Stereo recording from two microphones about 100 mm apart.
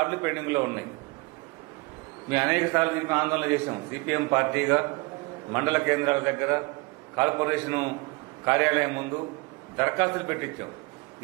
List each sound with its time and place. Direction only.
0.0 s a man's voice: 25° right (ahead or behind)
2.4 s a man's voice: 20° right (ahead or behind)